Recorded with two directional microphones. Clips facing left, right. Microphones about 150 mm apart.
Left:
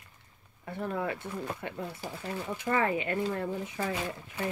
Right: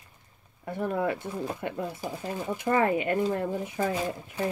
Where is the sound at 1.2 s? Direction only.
15° right (ahead or behind).